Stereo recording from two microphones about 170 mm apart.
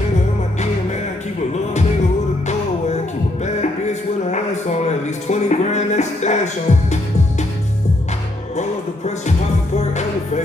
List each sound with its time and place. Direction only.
1.5 s music: 40° left (ahead or behind)
3.8 s a sound: 40° left (ahead or behind)
8.5 s music: 45° left (ahead or behind)